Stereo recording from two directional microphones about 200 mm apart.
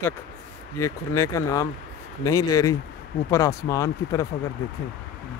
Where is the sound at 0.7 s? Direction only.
15° left (ahead or behind).